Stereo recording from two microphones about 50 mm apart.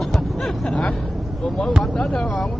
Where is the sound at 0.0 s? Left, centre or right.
Centre.